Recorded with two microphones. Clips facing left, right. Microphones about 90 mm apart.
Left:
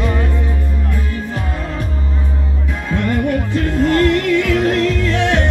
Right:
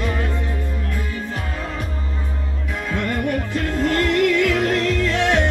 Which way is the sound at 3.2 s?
5° left (ahead or behind).